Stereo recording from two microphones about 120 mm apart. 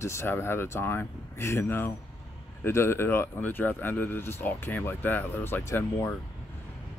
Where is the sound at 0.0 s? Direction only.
20° left (ahead or behind).